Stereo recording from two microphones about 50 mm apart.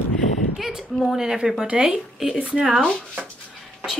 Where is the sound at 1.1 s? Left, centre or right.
Centre.